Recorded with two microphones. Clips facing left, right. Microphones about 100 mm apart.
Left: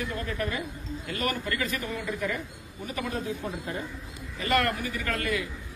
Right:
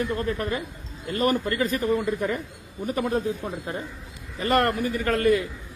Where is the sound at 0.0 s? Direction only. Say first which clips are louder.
Right 5 dB; 35° right (ahead or behind).